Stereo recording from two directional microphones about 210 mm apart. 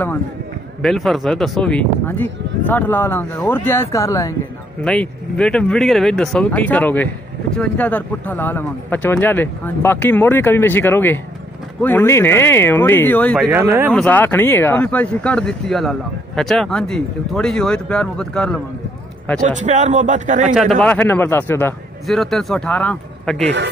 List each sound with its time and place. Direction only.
0.8 s speech: centre (ahead or behind)
4.8 s speech: 5° left (ahead or behind)
13.5 s speech: 10° right (ahead or behind)
13.9 s speech: 5° left (ahead or behind)
19.4 s speech: 35° right (ahead or behind)
20.5 s speech: centre (ahead or behind)